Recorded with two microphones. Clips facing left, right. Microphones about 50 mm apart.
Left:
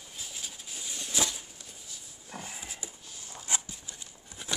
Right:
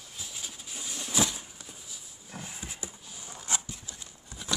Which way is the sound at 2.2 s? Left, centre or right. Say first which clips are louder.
Left 1 dB; centre.